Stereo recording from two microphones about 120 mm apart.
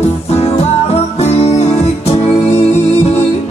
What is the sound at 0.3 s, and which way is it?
Music, 60° left (ahead or behind).